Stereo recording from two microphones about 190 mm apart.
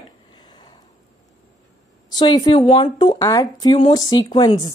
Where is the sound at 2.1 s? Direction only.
20° left (ahead or behind).